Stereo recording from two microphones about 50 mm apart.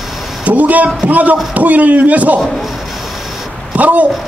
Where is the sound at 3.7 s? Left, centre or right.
Right.